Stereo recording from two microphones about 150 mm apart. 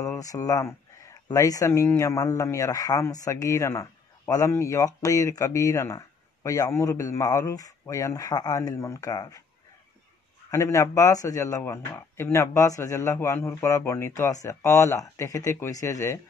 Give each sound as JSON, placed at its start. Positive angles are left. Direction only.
{"t": 0.0, "sound": "a man's voice", "side_deg": 20}
{"t": 10.5, "sound": "a man's voice", "side_deg": 20}